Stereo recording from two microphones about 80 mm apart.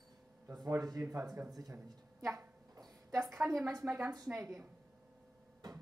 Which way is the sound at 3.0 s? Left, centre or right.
Right.